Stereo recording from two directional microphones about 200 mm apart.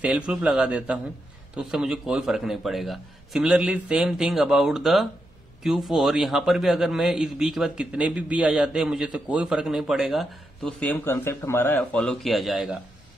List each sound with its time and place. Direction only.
0.3 s a man's voice: 5° right (ahead or behind)